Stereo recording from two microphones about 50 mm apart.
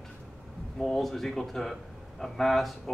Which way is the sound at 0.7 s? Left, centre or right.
Centre.